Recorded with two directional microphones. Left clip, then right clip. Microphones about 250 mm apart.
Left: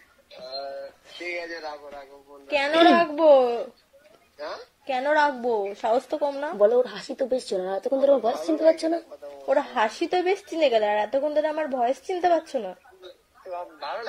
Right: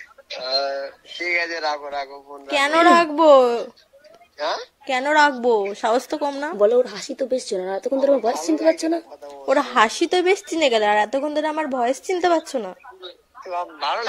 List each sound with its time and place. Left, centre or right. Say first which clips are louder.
1.5 s a woman's voice: right 11 dB; right
6.6 s speech: right 3 dB; centre
9.5 s a woman's voice: right 6 dB; right